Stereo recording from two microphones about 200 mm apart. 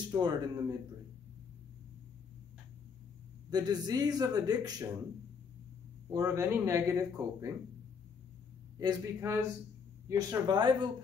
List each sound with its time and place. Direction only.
0.1 s speech: 20° right (ahead or behind)
3.4 s speech: 20° right (ahead or behind)
6.0 s speech: 15° right (ahead or behind)
8.7 s speech: 15° right (ahead or behind)